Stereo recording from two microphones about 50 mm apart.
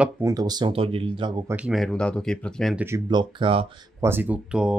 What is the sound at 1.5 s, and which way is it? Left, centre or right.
Speech, right.